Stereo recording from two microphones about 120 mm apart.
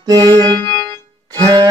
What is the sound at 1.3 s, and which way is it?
Music, 35° right (ahead or behind).